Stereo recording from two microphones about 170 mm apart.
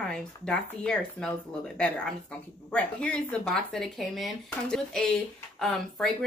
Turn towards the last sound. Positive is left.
turn(degrees=0)  # may be behind; listen again after turning